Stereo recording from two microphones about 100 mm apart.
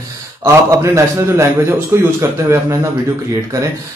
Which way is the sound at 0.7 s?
30° right (ahead or behind).